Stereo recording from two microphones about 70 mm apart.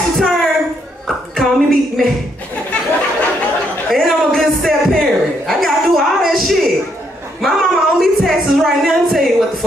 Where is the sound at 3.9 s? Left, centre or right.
Centre.